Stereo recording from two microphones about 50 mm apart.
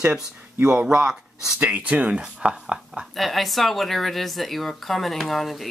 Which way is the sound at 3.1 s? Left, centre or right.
Centre.